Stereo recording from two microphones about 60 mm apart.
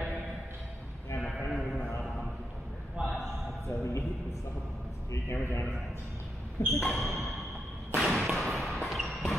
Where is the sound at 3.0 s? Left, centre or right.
Centre.